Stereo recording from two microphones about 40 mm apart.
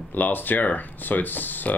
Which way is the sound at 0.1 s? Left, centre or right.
Left.